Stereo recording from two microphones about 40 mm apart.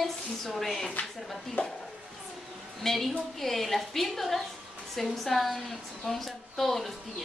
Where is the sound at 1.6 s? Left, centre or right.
Left.